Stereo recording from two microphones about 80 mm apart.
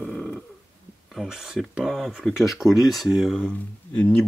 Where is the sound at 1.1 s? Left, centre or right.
Centre.